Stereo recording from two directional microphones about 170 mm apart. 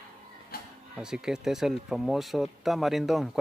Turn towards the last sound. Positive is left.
turn(degrees=0)  # may be behind; listen again after turning